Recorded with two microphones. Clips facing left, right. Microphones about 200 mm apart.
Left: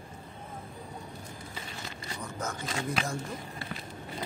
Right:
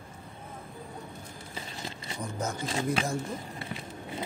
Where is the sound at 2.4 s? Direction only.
30° right (ahead or behind).